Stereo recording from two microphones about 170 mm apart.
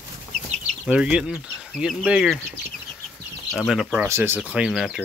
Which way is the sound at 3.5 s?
Centre (ahead or behind).